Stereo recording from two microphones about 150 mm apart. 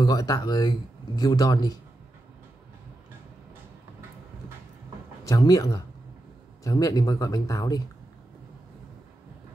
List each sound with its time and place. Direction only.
0.0 s speech: 25° left (ahead or behind)
5.2 s speech: 25° left (ahead or behind)